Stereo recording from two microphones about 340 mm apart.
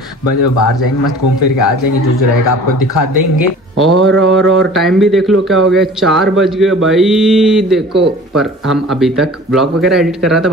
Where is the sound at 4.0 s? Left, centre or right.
Right.